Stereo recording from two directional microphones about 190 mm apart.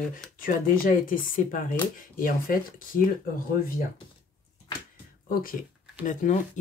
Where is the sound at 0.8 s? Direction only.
45° left (ahead or behind).